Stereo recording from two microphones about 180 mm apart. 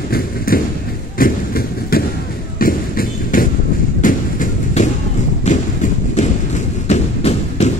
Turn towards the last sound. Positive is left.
turn(degrees=35)  # may be behind; listen again after turning